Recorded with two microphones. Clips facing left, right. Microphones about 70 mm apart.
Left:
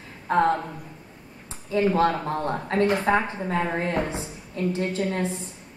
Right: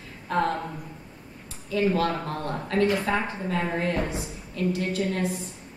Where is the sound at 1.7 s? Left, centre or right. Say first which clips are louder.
Left 3 dB; left.